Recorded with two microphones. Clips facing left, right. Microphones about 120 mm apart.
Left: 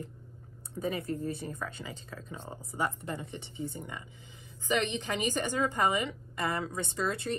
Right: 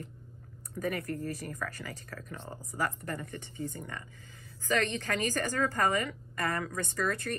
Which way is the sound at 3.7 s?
20° left (ahead or behind).